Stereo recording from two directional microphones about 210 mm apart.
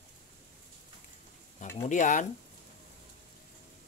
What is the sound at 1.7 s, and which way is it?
Speech, 35° left (ahead or behind).